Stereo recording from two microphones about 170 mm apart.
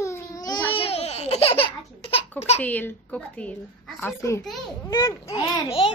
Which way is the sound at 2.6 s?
10° left (ahead or behind).